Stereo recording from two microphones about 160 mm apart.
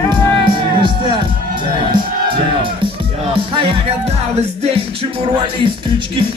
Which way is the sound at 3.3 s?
35° right (ahead or behind).